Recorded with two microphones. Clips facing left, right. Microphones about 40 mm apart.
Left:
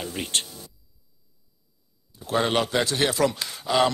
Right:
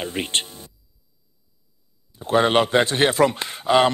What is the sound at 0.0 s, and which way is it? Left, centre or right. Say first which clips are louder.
Speech: right 4 dB; right.